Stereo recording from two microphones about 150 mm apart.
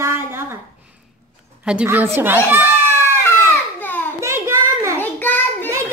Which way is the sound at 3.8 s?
10° left (ahead or behind).